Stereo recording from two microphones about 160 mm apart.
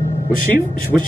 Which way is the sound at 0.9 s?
5° right (ahead or behind).